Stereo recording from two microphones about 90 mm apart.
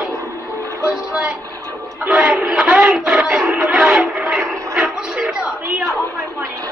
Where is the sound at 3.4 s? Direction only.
30° right (ahead or behind).